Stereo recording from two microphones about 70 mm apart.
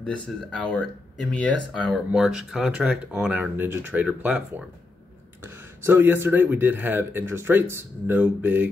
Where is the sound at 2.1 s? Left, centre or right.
Centre.